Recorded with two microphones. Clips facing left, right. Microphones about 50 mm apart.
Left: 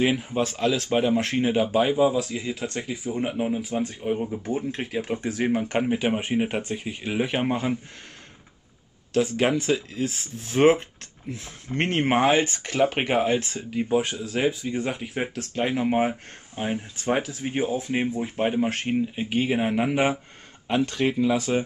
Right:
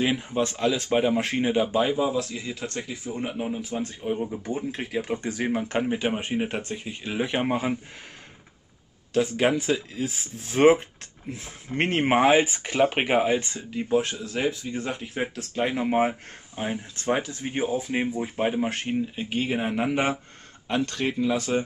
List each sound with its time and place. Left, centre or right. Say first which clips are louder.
0.0 s speech: left 1 dB; centre
1.5 s speech: left 1 dB; centre
7.2 s speech: left 1 dB; centre
7.5 s speech: even; centre
9.1 s speech: even; centre
10.4 s speech: right 1 dB; centre
13.8 s speech: right 1 dB; centre
16.5 s speech: left 2 dB; centre
18.9 s speech: left 2 dB; centre